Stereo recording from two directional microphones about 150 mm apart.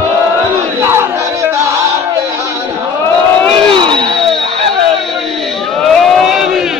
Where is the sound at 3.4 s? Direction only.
35° right (ahead or behind).